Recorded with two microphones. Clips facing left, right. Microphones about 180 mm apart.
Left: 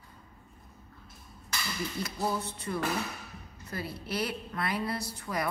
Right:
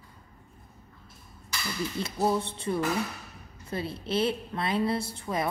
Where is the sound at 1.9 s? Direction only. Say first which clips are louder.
Right 6 dB; 25° right (ahead or behind).